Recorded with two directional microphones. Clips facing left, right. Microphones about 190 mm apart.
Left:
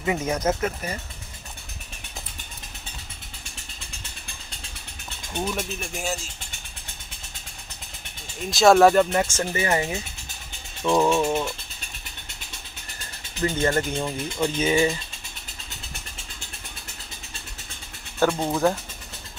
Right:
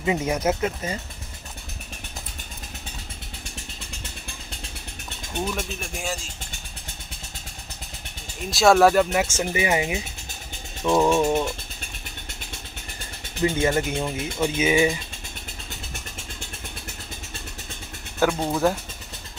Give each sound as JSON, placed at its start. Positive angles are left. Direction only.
{"t": 0.0, "sound": "speech", "side_deg": -15}
{"t": 5.5, "sound": "speech", "side_deg": 5}
{"t": 8.5, "sound": "speech", "side_deg": 0}
{"t": 13.4, "sound": "speech", "side_deg": -15}
{"t": 18.2, "sound": "speech", "side_deg": -5}